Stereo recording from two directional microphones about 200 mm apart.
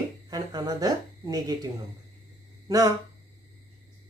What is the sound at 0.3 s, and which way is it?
Speech, 20° right (ahead or behind).